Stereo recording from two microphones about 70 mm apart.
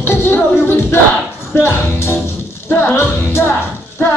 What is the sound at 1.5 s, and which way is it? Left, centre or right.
Speech, left.